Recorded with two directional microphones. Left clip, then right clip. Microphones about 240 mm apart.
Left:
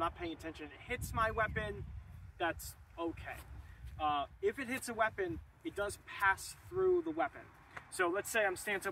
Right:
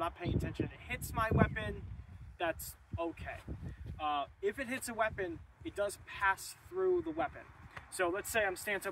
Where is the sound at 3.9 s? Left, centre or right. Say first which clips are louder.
Left 1 dB; centre.